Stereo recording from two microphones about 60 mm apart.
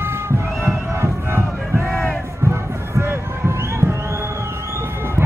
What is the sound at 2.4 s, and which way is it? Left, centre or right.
Music, right.